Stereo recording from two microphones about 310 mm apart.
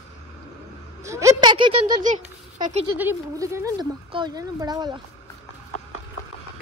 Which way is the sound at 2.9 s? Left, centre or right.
Centre.